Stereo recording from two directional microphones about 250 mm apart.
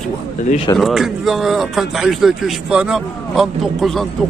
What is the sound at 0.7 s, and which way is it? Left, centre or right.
A man's voice, centre.